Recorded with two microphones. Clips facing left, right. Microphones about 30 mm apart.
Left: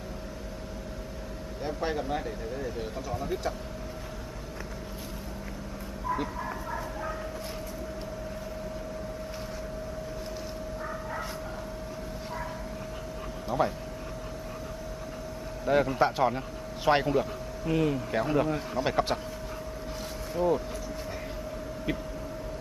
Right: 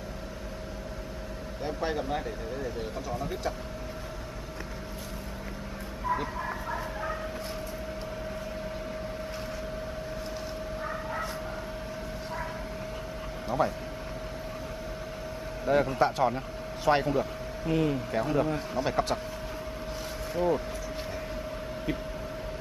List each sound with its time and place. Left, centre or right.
1.6 s speech: centre
6.2 s vehicle: centre
13.5 s speech: centre
15.7 s a man's voice: centre
18.9 s speech: centre
20.3 s speech: centre